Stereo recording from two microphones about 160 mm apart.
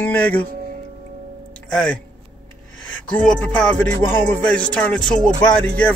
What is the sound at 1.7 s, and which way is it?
Speech, 5° left (ahead or behind).